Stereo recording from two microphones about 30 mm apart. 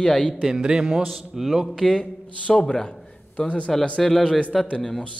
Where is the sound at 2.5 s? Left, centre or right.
Centre.